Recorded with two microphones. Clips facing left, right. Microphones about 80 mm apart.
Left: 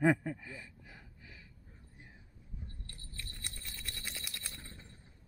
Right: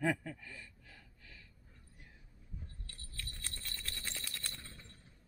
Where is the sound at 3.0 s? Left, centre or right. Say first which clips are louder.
Even; centre.